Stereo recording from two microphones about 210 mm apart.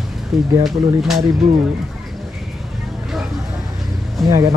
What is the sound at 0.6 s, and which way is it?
Speech, centre (ahead or behind).